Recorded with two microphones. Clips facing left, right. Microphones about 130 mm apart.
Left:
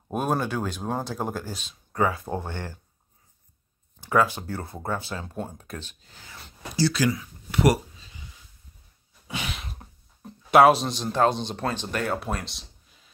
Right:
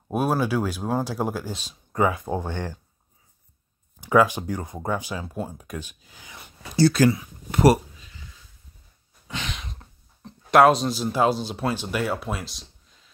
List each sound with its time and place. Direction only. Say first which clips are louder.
0.1 s speech: right 3 dB; 5° right (ahead or behind)
1.5 s speech: right 3 dB; 35° right (ahead or behind)
1.9 s speech: right 2 dB; 20° right (ahead or behind)
4.3 s speech: right 3 dB; 15° right (ahead or behind)
6.8 s speech: right 6 dB; 50° right (ahead or behind)
9.3 s sigh: even; 5° left (ahead or behind)
10.5 s a man's voice: even; centre (ahead or behind)